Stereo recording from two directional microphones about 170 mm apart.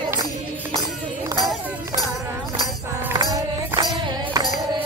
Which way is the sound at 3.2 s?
25° right (ahead or behind).